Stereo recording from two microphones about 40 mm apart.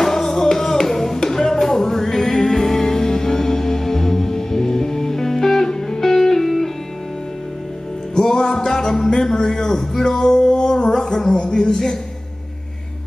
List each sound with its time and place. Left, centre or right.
0.0 s music: centre
8.1 s music: centre